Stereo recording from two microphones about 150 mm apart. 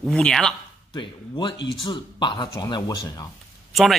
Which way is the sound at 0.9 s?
30° left (ahead or behind).